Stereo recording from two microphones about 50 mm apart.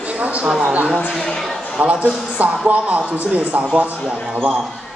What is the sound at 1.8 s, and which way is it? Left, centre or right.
A man's voice, right.